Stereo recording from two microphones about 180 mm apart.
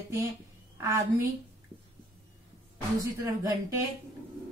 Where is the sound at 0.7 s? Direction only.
15° right (ahead or behind).